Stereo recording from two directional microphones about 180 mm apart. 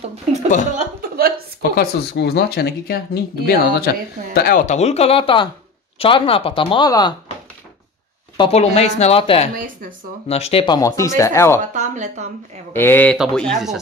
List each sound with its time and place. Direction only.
0.0 s speech: 40° right (ahead or behind)
1.6 s speech: 60° left (ahead or behind)
4.6 s speech: 35° left (ahead or behind)
8.4 s speech: 35° left (ahead or behind)
9.6 s speech: 50° right (ahead or behind)
10.2 s speech: 35° left (ahead or behind)
10.8 s speech: 15° left (ahead or behind)
11.7 s speech: 40° right (ahead or behind)
12.7 s speech: 10° left (ahead or behind)